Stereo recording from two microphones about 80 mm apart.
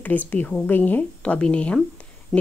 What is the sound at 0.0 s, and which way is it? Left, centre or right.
A woman's voice, left.